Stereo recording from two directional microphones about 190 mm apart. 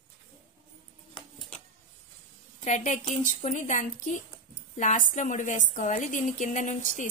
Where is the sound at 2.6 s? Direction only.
40° left (ahead or behind).